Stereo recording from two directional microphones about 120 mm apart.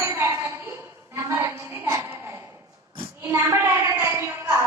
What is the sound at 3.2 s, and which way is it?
A woman's voice, 25° right (ahead or behind).